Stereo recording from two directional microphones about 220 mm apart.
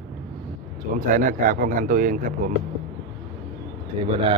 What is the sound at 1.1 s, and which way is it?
A man's voice, 35° right (ahead or behind).